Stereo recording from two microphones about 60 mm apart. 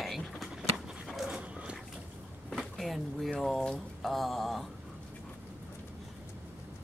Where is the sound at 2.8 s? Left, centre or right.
Centre.